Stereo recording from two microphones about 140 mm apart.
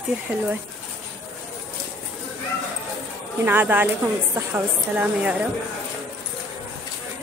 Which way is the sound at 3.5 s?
15° right (ahead or behind).